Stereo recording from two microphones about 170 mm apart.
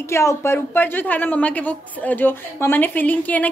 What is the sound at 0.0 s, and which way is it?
A woman's voice, 15° left (ahead or behind).